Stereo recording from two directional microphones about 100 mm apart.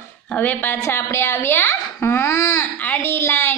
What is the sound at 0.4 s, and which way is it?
A woman's voice, 15° left (ahead or behind).